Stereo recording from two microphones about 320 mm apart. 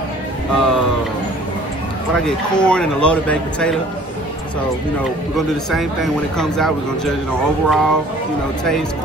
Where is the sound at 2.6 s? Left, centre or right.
Centre.